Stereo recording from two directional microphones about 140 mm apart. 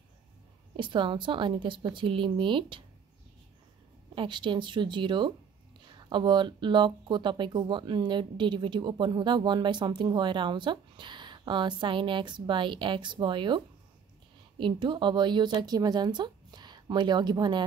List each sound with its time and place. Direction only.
0.7 s speech: 35° right (ahead or behind)
4.1 s speech: 35° right (ahead or behind)
14.6 s speech: 35° right (ahead or behind)